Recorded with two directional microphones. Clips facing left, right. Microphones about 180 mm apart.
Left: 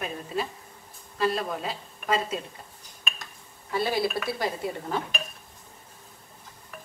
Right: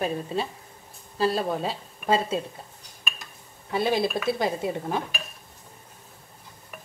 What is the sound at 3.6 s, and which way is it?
A woman's voice, 20° right (ahead or behind).